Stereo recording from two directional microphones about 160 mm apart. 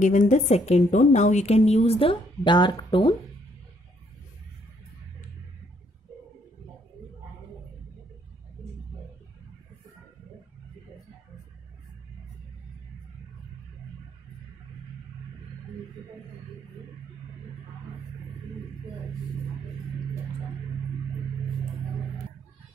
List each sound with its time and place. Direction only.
0.0 s a woman's voice: 50° left (ahead or behind); by 3.2 s 30° left (ahead or behind)